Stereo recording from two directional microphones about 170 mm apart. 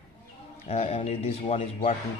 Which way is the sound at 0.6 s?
40° left (ahead or behind).